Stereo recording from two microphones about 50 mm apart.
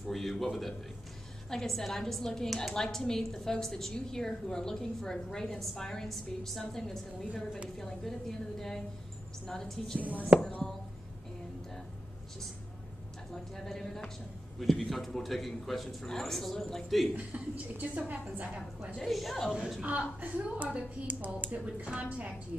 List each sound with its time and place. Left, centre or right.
0.1 s a man's voice: centre
9.9 s a woman's voice: right
13.3 s a woman's voice: centre
17.1 s a woman's voice: right
18.9 s a man's voice: centre
20.2 s a woman's voice: right